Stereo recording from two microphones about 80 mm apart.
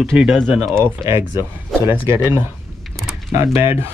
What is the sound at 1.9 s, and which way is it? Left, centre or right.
Speech, right.